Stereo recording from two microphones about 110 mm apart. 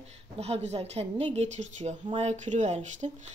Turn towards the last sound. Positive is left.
turn(degrees=-90)